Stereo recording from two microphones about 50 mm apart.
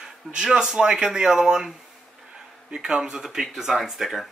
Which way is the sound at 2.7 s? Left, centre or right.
Centre.